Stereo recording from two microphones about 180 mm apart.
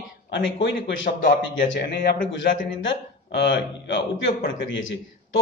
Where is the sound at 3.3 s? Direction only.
80° left.